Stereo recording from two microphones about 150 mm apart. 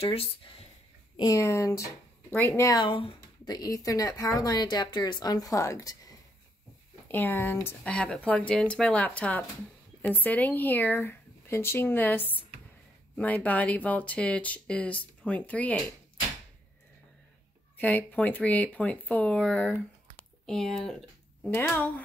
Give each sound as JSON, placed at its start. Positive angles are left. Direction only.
{"t": 0.0, "sound": "speech", "side_deg": 40}
{"t": 1.1, "sound": "speech", "side_deg": 25}
{"t": 2.7, "sound": "speech", "side_deg": 30}
{"t": 7.1, "sound": "speech", "side_deg": 15}
{"t": 12.2, "sound": "speech", "side_deg": 35}
{"t": 13.1, "sound": "speech", "side_deg": 10}
{"t": 17.7, "sound": "speech", "side_deg": 10}
{"t": 20.2, "sound": "a sound", "side_deg": 5}
{"t": 21.5, "sound": "speech", "side_deg": 10}